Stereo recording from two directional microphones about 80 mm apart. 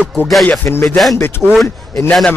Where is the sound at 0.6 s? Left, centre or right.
Left.